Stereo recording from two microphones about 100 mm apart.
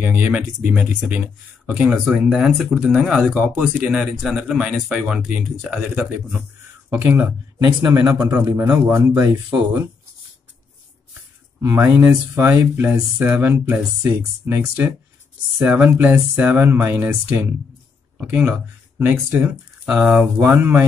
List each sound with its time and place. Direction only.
0.0 s speech: 15° right (ahead or behind)
3.3 s speech: 15° right (ahead or behind)
6.9 s speech: 20° right (ahead or behind)
7.6 s speech: 35° right (ahead or behind)
8.3 s speech: 20° right (ahead or behind)
11.6 s speech: 25° right (ahead or behind)
15.6 s speech: 20° right (ahead or behind)
19.9 s speech: 10° right (ahead or behind)